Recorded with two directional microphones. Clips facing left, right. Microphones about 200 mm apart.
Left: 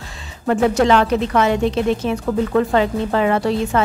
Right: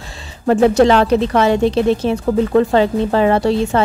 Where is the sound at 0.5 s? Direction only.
30° right (ahead or behind).